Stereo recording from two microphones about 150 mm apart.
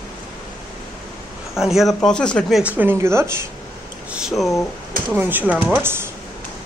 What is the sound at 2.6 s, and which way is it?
Speech, 10° right (ahead or behind).